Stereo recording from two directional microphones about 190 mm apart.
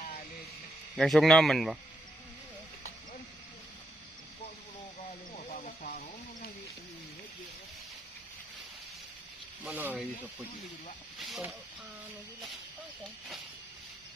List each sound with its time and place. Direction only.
0.9 s speech: centre (ahead or behind)
5.8 s a sound: 55° left (ahead or behind)
9.7 s speech: 10° right (ahead or behind)
11.1 s speech: centre (ahead or behind)